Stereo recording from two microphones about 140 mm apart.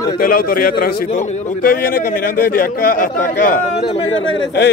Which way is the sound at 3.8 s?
40° left (ahead or behind).